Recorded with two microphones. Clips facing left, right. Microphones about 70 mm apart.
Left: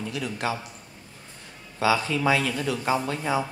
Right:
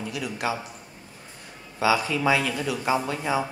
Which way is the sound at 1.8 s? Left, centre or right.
Centre.